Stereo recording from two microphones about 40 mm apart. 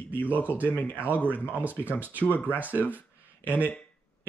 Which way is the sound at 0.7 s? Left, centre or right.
Left.